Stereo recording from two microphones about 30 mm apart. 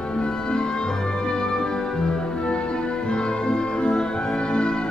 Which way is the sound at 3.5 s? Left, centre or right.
Left.